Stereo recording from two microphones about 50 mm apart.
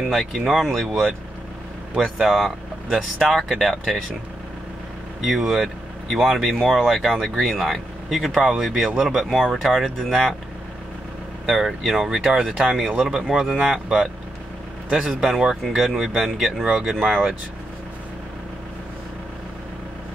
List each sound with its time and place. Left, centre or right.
0.0 s speech: centre
2.1 s speech: centre
5.2 s speech: centre
11.4 s speech: centre
14.9 s speech: right
15.1 s speech: centre